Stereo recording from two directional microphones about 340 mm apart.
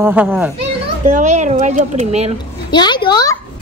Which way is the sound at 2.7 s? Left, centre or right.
Centre.